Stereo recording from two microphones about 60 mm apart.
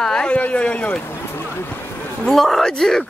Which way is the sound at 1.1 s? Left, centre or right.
Left.